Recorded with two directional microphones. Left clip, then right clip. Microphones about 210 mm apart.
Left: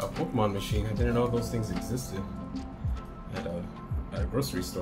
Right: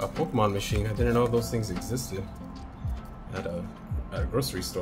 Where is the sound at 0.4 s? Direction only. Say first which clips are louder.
Right 3 dB; 25° right (ahead or behind).